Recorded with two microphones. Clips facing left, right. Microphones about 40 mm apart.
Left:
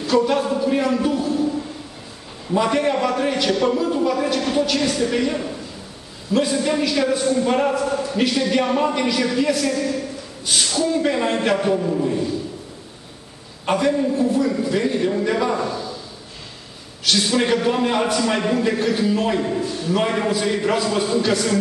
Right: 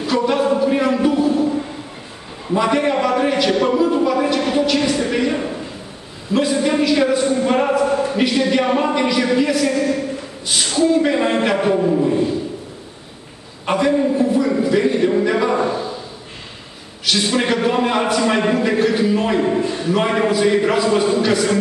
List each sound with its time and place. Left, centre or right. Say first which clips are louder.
0.0 s a sound: right 1 dB; centre
2.4 s a man's voice: right 2 dB; centre
13.7 s a woman's voice: right 2 dB; centre
17.0 s a woman's voice: right 1 dB; centre